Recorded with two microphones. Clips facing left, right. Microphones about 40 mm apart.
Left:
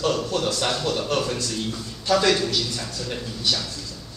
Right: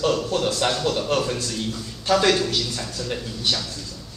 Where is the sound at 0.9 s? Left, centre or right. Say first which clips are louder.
Right 2 dB; right.